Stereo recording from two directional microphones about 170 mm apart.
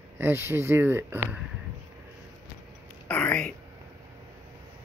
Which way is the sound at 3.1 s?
5° left (ahead or behind).